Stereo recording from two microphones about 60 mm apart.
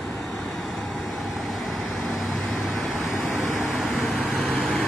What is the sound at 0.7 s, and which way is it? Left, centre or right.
Vehicle, centre.